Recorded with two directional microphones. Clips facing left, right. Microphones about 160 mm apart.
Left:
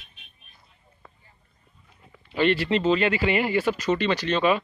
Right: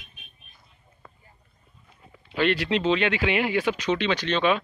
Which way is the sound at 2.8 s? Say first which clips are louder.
Left 1 dB; 5° left (ahead or behind).